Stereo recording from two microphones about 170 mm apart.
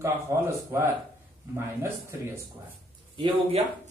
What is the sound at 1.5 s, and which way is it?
Speech, 15° right (ahead or behind).